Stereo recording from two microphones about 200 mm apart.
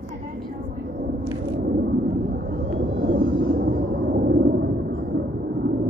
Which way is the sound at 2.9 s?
50° right (ahead or behind).